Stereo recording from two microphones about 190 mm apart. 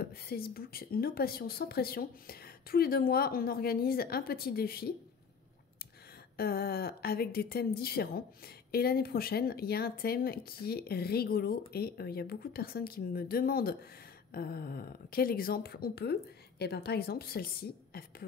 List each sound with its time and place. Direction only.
0.0 s a woman's voice: 55° left (ahead or behind)
6.3 s a woman's voice: 55° left (ahead or behind)